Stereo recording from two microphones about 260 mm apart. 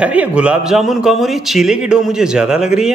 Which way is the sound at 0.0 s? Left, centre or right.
Centre.